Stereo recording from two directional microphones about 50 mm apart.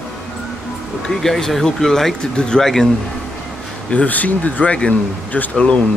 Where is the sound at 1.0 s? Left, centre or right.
Centre.